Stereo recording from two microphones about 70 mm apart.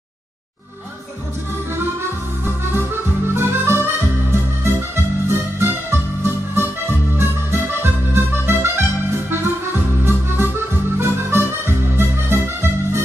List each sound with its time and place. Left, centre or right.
1.8 s music: right
7.2 s accordion: right
10.0 s music: right